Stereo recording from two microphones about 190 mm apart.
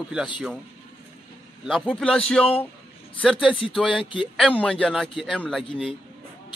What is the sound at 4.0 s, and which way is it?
Speech, 25° left (ahead or behind).